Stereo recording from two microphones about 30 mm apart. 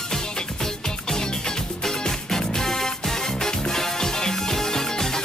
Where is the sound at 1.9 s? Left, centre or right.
Centre.